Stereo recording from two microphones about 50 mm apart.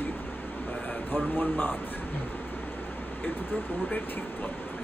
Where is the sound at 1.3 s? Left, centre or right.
Left.